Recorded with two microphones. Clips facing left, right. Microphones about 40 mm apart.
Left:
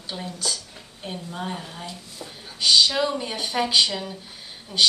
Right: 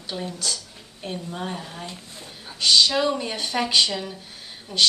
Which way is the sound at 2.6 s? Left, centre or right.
Centre.